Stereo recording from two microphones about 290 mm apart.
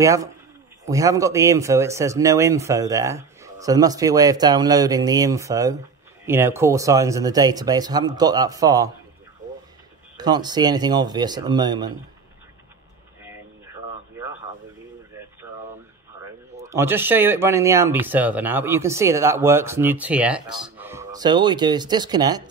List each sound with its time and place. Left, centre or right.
0.0 s speech: centre
10.1 s speech: centre
13.2 s a sound: centre
16.2 s speech: centre